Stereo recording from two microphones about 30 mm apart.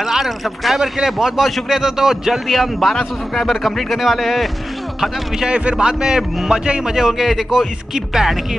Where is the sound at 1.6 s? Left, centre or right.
Centre.